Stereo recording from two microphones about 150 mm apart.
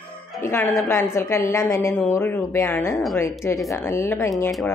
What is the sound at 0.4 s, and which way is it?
A woman's voice, 15° left (ahead or behind).